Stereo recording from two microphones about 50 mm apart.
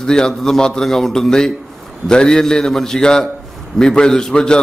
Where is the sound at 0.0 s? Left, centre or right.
Centre.